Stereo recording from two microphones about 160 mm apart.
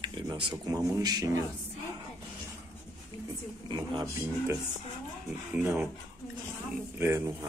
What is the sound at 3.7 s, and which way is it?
Speech, 25° right (ahead or behind).